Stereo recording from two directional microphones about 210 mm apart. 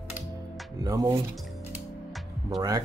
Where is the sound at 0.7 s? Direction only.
20° right (ahead or behind).